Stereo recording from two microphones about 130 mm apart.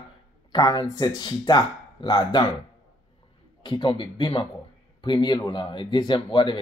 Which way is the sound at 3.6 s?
35° left (ahead or behind).